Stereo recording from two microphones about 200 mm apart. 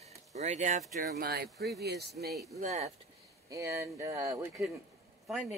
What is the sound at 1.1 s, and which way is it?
Speech, 50° right (ahead or behind).